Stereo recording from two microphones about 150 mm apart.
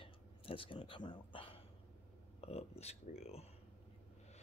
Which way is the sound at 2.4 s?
45° left (ahead or behind).